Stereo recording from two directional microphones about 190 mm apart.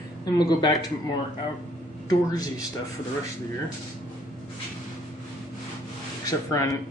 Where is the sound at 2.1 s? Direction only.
20° left (ahead or behind).